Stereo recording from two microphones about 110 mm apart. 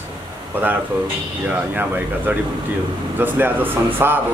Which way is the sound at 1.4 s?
15° right (ahead or behind).